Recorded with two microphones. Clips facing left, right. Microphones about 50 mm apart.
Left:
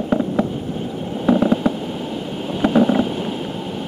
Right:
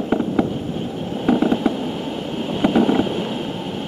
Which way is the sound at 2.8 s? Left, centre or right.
Right.